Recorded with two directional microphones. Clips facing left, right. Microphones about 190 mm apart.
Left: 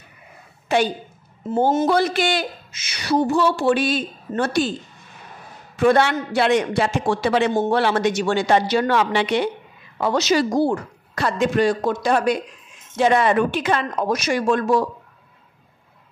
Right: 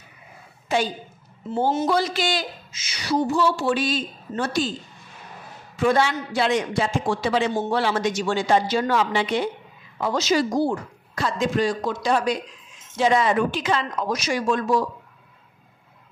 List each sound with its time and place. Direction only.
0.7 s a woman's voice: 65° left (ahead or behind)
1.5 s a woman's voice: 50° left (ahead or behind)
5.8 s a woman's voice: 60° left (ahead or behind)